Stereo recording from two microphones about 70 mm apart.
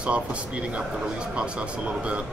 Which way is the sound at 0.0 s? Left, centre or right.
Centre.